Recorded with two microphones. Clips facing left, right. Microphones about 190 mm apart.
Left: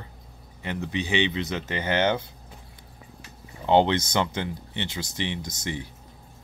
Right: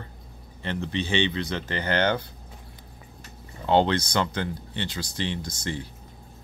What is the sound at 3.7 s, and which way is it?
Speech, 20° left (ahead or behind).